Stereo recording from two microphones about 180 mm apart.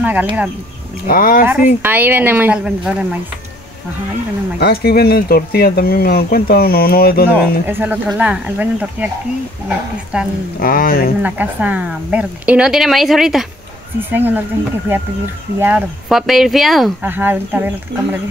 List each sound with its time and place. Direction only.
0.0 s speech: 10° right (ahead or behind)
1.0 s speech: 50° left (ahead or behind)
1.4 s speech: 10° right (ahead or behind)
4.6 s speech: 60° left (ahead or behind)
7.2 s speech: 10° right (ahead or behind)
10.1 s a woman's voice: 5° right (ahead or behind)
10.6 s speech: 55° left (ahead or behind)
11.2 s a woman's voice: 10° right (ahead or behind)
15.6 s a woman's voice: 5° right (ahead or behind)